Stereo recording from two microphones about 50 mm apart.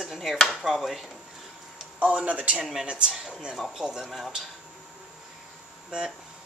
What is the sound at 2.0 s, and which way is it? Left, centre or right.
A woman's voice, right.